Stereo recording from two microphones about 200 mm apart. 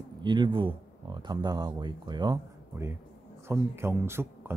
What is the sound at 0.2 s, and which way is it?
Speech, 20° right (ahead or behind).